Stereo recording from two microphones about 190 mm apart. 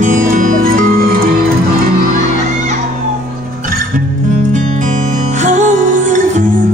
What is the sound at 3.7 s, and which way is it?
Music, 50° right (ahead or behind).